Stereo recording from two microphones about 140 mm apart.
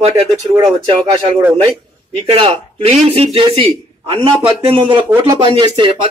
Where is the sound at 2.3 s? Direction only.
45° right (ahead or behind).